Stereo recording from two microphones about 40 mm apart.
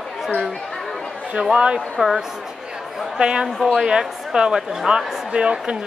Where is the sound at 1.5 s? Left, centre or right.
Right.